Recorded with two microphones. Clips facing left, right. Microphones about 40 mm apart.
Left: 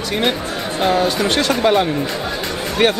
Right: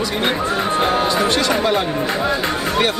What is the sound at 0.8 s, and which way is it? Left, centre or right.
Speech, right.